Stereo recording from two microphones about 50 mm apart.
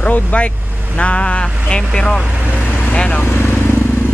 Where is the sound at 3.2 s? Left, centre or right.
Left.